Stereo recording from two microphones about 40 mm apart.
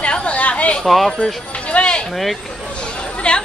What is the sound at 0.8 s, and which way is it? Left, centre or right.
Speech, centre.